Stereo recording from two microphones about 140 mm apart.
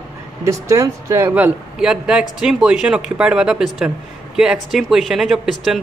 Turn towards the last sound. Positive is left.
turn(degrees=0)  # may be behind; listen again after turning